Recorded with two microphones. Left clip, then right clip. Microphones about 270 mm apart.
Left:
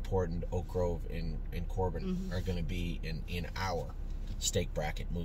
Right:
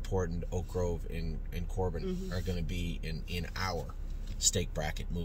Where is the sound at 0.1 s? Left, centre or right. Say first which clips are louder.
Left 1 dB; centre.